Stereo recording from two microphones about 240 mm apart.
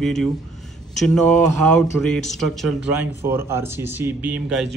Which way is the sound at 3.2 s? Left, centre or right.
Centre.